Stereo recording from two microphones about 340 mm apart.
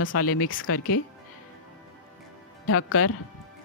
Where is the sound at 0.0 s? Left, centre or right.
Left.